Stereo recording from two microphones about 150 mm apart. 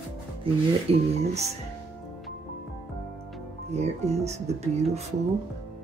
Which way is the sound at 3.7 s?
45° right (ahead or behind).